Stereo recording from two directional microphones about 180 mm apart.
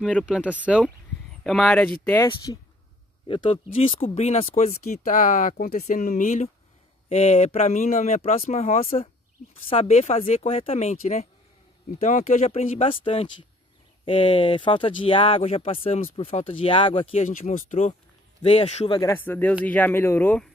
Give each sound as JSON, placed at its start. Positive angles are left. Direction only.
{"t": 0.0, "sound": "speech", "side_deg": 0}
{"t": 2.2, "sound": "speech", "side_deg": 20}
{"t": 17.3, "sound": "speech", "side_deg": 45}
{"t": 18.9, "sound": "speech", "side_deg": 15}